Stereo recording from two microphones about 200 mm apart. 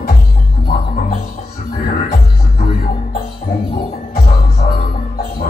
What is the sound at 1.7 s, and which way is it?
Music, 45° left (ahead or behind).